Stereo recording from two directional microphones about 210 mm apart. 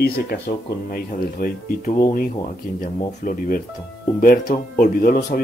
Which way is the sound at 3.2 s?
40° left (ahead or behind).